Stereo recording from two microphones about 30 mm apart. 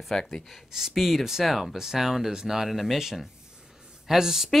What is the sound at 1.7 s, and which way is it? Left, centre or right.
A woman's voice, centre.